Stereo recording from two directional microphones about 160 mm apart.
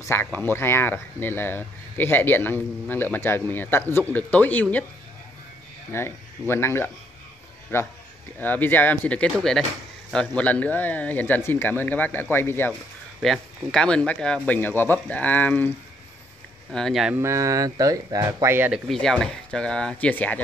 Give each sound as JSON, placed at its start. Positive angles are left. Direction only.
{"t": 0.0, "sound": "speech", "side_deg": 15}
{"t": 5.9, "sound": "speech", "side_deg": 15}
{"t": 13.2, "sound": "speech", "side_deg": 5}
{"t": 16.7, "sound": "speech", "side_deg": 0}
{"t": 17.2, "sound": "speech", "side_deg": -20}
{"t": 18.9, "sound": "speech", "side_deg": 5}